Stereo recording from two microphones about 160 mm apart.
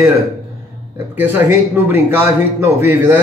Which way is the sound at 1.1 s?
15° right (ahead or behind).